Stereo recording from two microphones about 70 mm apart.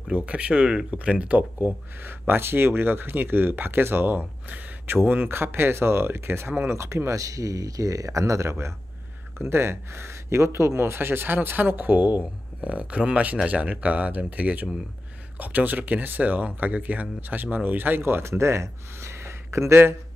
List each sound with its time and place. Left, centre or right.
0.1 s speech: centre; by 20.0 s right